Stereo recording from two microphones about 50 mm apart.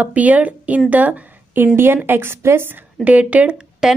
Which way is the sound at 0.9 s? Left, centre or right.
Right.